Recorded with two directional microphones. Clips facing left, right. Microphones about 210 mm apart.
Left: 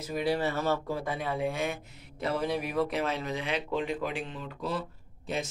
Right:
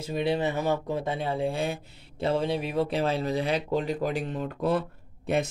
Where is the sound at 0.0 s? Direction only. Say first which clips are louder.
Right 2 dB; 25° right (ahead or behind).